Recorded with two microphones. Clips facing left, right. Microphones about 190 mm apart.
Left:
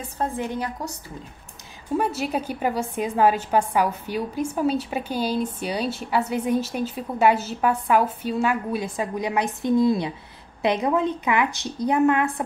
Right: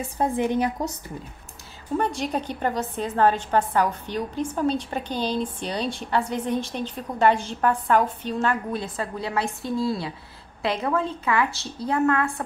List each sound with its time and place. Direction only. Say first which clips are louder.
0.2 s a woman's voice: right 4 dB; 20° right (ahead or behind)
2.0 s a woman's voice: left 1 dB; 5° left (ahead or behind)